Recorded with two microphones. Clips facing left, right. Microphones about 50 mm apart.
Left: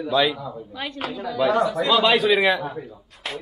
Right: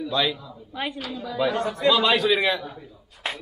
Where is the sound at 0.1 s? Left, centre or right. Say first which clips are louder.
Left 5 dB; centre.